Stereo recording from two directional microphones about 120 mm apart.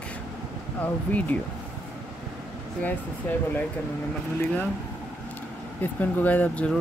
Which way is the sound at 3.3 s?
15° left (ahead or behind).